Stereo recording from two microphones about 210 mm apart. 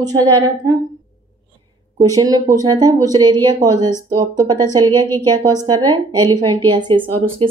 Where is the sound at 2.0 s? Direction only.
20° right (ahead or behind).